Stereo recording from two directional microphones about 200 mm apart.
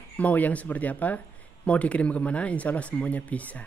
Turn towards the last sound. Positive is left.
turn(degrees=5)  # may be behind; listen again after turning